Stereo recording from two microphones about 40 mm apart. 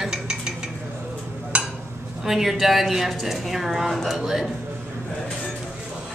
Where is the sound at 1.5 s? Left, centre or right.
Right.